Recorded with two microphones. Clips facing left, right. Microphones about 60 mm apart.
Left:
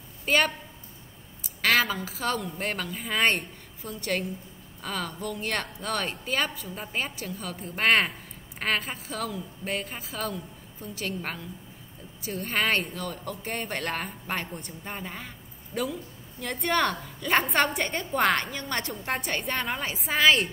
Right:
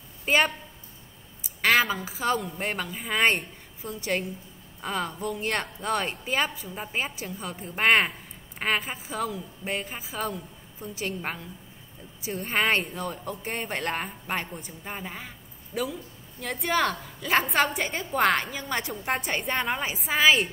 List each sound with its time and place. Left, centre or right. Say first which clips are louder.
0.2 s a woman's voice: right 1 dB; centre